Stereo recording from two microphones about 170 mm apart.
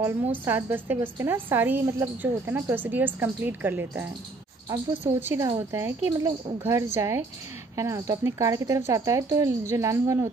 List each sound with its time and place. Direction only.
0.0 s a woman's voice: 15° right (ahead or behind)